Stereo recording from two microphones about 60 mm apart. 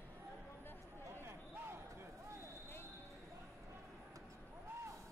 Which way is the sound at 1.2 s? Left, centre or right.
Right.